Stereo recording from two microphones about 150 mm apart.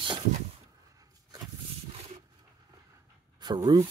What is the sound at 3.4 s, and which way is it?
Speech, 30° right (ahead or behind).